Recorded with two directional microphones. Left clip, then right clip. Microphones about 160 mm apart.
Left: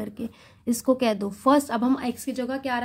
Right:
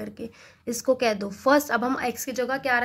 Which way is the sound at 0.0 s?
35° left (ahead or behind).